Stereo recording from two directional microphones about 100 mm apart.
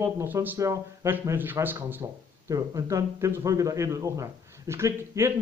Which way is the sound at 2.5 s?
35° right (ahead or behind).